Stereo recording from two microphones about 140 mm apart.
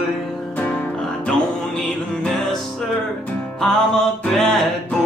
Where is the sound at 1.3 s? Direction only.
5° left (ahead or behind).